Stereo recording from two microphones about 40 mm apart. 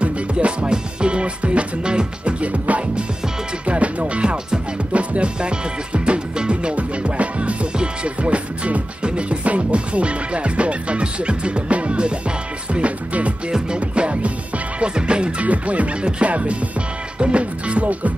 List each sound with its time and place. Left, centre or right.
0.0 s music: right
15.4 s music: right